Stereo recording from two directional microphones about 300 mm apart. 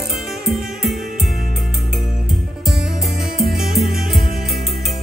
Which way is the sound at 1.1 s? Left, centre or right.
Centre.